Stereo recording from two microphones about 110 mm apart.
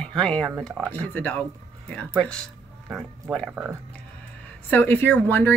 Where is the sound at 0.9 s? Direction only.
15° left (ahead or behind).